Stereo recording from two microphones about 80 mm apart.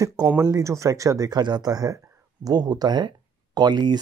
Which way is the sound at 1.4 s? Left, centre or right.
Right.